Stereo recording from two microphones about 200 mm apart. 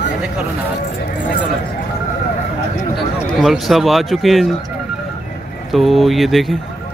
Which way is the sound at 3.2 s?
Centre (ahead or behind).